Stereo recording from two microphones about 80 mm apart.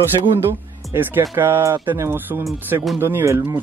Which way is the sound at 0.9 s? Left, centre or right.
Right.